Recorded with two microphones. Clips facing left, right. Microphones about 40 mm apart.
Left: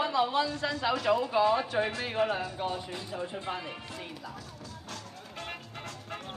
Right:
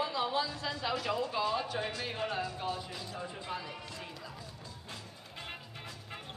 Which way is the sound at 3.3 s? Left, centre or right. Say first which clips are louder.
Left 4 dB; left.